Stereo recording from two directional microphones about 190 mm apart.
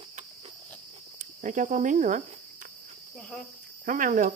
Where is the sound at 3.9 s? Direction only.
45° right (ahead or behind).